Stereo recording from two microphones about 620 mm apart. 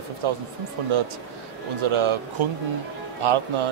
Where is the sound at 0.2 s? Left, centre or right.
Right.